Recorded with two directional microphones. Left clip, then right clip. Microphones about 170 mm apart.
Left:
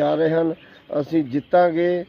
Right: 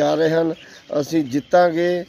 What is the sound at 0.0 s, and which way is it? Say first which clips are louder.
Speech: right 2 dB; 10° right (ahead or behind).